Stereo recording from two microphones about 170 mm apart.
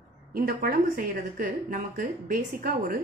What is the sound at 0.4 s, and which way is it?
A woman's voice, 55° right (ahead or behind).